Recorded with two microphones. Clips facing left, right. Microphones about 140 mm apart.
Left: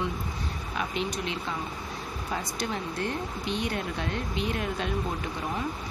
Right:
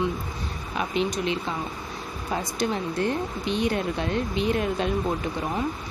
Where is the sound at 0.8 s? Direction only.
20° right (ahead or behind).